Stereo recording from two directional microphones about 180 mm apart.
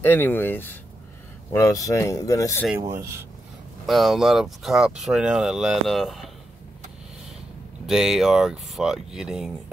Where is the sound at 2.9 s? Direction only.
15° right (ahead or behind).